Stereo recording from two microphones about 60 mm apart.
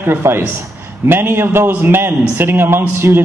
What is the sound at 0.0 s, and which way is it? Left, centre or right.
Speech, right.